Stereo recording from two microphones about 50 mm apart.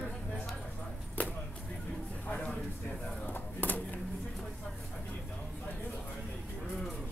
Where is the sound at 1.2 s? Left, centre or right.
Left.